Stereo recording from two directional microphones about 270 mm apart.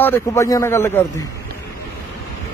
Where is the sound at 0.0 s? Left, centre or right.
Centre.